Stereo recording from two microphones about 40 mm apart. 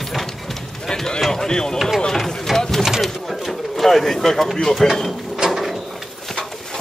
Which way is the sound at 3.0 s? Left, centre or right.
Centre.